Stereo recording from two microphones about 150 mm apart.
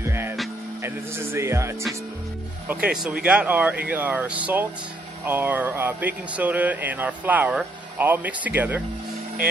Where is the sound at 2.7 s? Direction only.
5° right (ahead or behind).